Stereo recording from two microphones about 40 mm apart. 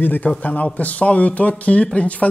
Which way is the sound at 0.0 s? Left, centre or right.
Left.